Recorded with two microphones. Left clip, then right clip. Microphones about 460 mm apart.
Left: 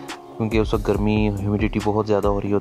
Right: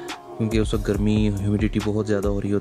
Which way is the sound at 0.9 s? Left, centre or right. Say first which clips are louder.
Left 3 dB; centre.